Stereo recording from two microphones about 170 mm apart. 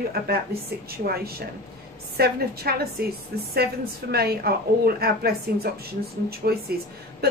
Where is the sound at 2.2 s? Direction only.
65° right (ahead or behind).